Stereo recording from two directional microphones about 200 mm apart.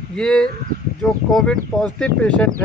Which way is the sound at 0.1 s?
5° left (ahead or behind).